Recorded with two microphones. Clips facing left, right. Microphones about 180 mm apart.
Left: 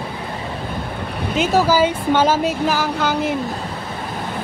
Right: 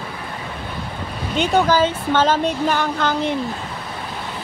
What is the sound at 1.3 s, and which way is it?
Speech, 5° left (ahead or behind).